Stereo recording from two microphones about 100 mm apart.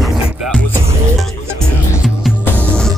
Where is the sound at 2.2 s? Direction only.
5° right (ahead or behind).